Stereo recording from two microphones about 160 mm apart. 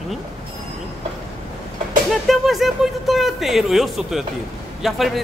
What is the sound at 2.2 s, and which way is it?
Speech, centre (ahead or behind).